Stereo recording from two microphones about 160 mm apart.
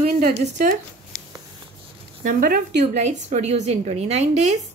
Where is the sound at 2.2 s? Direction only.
60° right (ahead or behind).